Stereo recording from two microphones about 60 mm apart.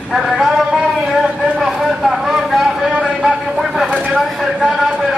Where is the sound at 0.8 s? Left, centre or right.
Centre.